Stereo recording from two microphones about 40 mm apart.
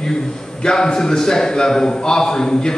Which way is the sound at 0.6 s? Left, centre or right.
Centre.